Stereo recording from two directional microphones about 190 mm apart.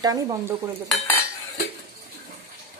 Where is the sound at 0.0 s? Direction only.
20° right (ahead or behind).